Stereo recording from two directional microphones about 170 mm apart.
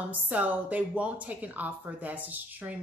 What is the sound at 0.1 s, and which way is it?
A woman's voice, 10° right (ahead or behind).